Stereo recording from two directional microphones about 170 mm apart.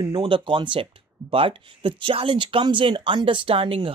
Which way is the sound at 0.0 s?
30° right (ahead or behind).